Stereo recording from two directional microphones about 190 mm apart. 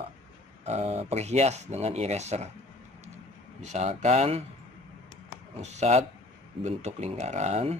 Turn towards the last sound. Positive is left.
turn(degrees=-35)  # may be behind; listen again after turning